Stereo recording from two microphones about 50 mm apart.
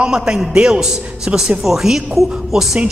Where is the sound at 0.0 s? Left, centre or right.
Centre.